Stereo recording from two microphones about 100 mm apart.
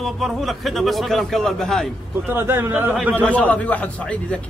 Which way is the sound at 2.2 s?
20° right (ahead or behind).